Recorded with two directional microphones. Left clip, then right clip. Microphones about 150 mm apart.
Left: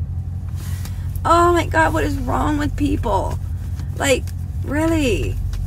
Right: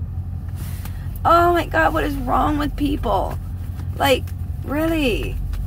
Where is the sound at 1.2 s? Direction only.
30° left (ahead or behind).